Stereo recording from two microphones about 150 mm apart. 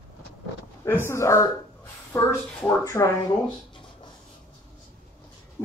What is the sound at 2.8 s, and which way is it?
Speech, 20° left (ahead or behind).